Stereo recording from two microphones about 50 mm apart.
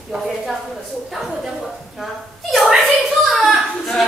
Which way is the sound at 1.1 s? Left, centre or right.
Centre.